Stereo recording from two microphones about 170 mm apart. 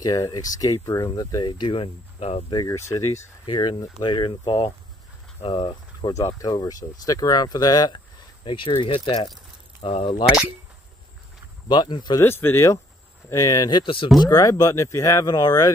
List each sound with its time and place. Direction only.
0.0 s speech: 20° left (ahead or behind)
2.5 s speech: 20° left (ahead or behind)
3.4 s speech: 25° left (ahead or behind)
11.7 s speech: 25° left (ahead or behind)
12.2 s speech: 15° left (ahead or behind); by 14.1 s 30° left (ahead or behind)
14.2 s speech: 20° left (ahead or behind)